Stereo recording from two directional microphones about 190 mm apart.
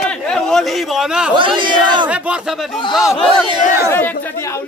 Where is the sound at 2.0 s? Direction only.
5° right (ahead or behind).